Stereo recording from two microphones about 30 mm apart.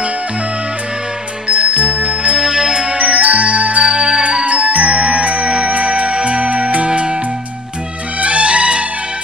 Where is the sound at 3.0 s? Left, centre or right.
Right.